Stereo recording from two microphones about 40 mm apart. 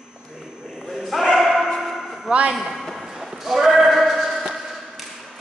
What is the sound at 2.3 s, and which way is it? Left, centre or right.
Speech, right.